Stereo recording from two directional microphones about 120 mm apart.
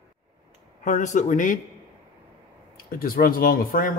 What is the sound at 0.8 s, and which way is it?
Speech, 90° left.